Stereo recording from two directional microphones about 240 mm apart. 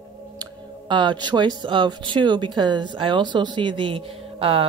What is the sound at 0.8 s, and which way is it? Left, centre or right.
A woman's voice, centre.